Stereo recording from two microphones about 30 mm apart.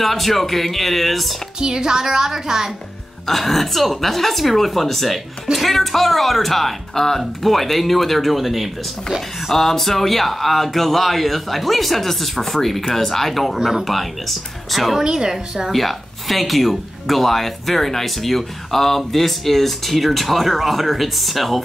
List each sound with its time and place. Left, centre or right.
0.0 s speech: centre
1.6 s speech: right
3.3 s speech: centre
9.5 s speech: centre
14.7 s speech: centre
15.0 s speech: right
15.7 s speech: centre